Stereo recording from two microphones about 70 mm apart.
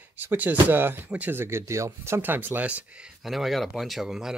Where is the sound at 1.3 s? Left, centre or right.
Right.